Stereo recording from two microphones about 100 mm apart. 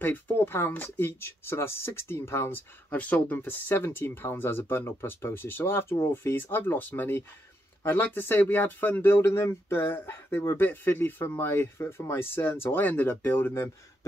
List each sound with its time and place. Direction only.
0.0 s speech: 20° left (ahead or behind)